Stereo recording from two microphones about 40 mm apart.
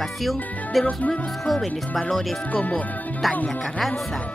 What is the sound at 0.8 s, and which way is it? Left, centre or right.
Music, left.